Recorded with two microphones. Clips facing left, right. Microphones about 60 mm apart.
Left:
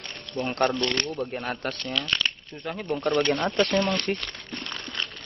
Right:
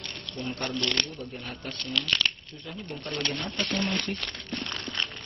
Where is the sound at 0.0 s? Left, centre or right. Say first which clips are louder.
Left 5 dB; left.